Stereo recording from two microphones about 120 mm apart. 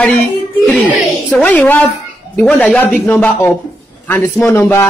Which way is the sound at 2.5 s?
10° left (ahead or behind).